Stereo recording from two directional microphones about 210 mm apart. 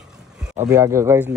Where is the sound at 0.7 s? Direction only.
15° right (ahead or behind).